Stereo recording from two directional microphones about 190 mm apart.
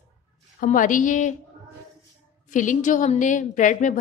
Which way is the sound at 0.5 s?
45° left (ahead or behind).